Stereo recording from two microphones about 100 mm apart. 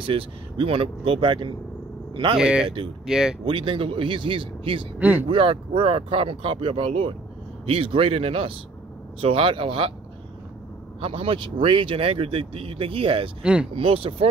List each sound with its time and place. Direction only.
0.0 s speech: 65° right (ahead or behind)
2.3 s speech: 10° right (ahead or behind)
3.4 s speech: 60° right (ahead or behind)
4.9 s speech: 15° right (ahead or behind)
5.3 s speech: 65° right (ahead or behind)
7.6 s speech: 75° right (ahead or behind)
11.0 s speech: 70° right (ahead or behind)
13.4 s speech: 10° right (ahead or behind)
13.7 s speech: 65° right (ahead or behind)